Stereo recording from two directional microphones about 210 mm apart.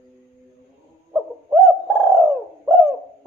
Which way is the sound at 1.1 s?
5° right (ahead or behind).